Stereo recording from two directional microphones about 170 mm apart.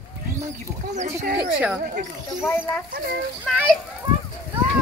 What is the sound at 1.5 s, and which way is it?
Speech, 10° right (ahead or behind).